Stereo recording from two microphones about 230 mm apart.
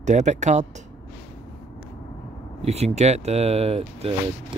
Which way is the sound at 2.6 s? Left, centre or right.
Right.